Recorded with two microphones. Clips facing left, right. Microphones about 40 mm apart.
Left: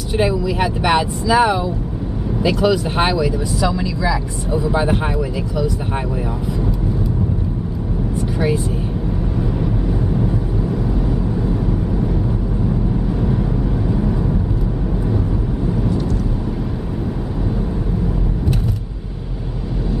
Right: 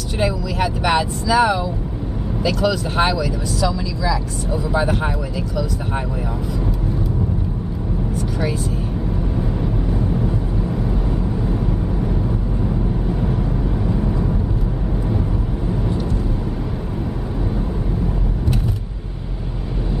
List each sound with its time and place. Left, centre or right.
0.2 s speech: centre
8.2 s vehicle: left